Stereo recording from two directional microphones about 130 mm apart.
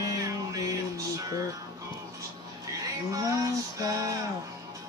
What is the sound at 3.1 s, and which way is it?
Music, 25° right (ahead or behind).